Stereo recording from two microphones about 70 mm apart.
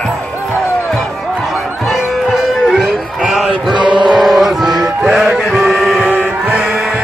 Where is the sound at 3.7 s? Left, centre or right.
Right.